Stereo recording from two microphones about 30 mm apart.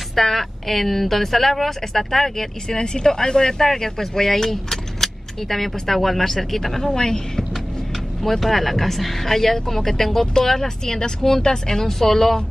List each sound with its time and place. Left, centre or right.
0.1 s speech: centre
2.8 s speech: left; by 7.0 s centre
7.0 s speech: centre
8.2 s speech: centre
12.1 s speech: centre